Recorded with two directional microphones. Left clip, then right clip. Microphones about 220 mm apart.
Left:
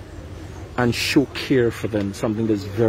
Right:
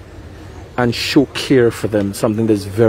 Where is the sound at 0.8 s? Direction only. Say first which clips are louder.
Right 5 dB; 15° right (ahead or behind).